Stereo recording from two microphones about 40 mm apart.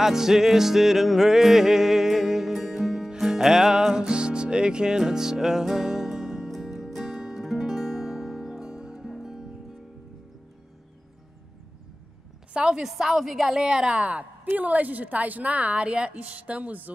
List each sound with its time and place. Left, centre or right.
0.0 s music: centre
7.2 s music: centre
7.4 s music: centre
12.5 s a woman's voice: right
12.8 s a woman's voice: centre
13.8 s a woman's voice: right
14.4 s a woman's voice: right